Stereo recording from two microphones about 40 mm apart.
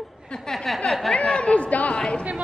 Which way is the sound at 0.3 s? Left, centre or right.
Left.